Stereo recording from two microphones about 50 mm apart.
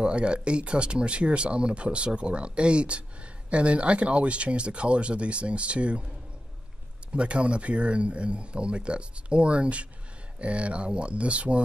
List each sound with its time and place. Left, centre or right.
0.0 s speech: right
7.1 s speech: right